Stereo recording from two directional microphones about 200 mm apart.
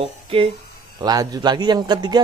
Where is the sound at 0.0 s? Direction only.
30° right (ahead or behind).